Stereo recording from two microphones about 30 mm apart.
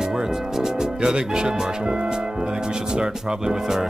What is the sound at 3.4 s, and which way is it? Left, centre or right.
Speech, centre.